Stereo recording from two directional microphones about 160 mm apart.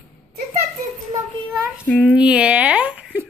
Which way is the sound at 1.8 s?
10° left (ahead or behind).